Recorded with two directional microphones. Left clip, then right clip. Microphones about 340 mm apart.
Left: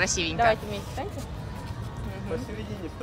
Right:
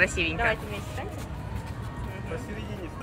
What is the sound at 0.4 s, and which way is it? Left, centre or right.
Speech, left.